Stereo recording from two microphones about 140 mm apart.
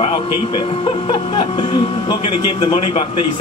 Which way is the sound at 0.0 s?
35° left (ahead or behind).